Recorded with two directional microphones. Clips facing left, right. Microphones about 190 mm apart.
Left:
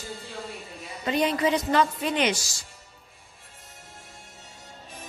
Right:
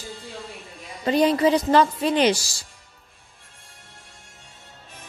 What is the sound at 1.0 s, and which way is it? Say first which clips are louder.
Speech: right 5 dB; 35° right (ahead or behind).